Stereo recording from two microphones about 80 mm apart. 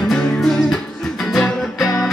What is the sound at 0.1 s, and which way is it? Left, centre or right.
Music, centre.